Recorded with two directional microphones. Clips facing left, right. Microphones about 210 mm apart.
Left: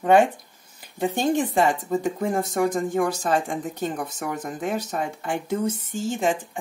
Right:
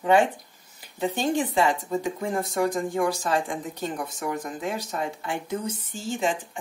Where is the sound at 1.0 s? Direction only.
50° left (ahead or behind).